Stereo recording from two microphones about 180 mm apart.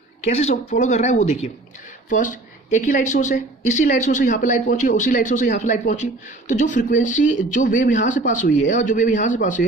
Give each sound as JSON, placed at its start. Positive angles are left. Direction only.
{"t": 0.2, "sound": "a woman's voice", "side_deg": 35}